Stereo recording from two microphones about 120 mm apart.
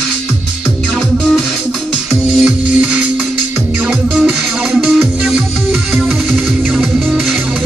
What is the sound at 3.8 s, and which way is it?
Music, 5° right (ahead or behind).